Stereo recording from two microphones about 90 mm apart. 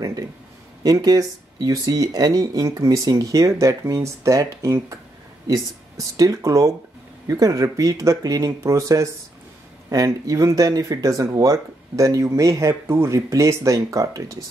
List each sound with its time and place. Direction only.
0.8 s speech: 45° right (ahead or behind)